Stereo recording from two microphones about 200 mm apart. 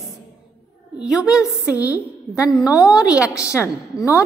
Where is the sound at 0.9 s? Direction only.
5° right (ahead or behind).